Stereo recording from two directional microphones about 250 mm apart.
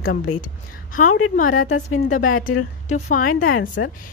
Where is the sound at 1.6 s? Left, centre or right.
Left.